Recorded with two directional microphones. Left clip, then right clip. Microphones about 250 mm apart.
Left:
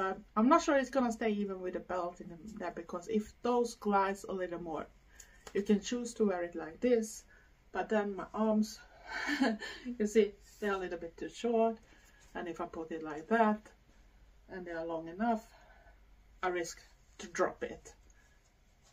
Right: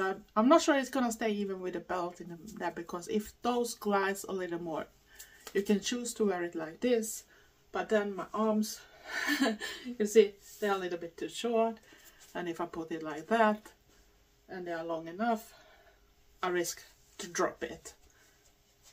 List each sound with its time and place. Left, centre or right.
0.0 s speech: centre
14.7 s speech: centre
16.3 s speech: centre